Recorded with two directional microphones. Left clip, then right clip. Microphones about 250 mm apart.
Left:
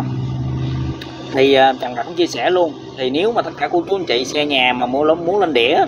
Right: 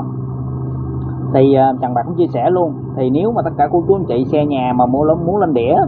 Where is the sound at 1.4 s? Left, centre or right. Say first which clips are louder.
Even; left.